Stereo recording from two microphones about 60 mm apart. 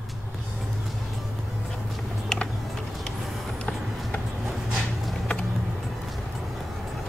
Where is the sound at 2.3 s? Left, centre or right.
Centre.